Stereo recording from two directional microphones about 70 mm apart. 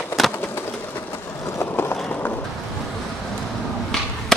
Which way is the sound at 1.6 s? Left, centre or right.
Left.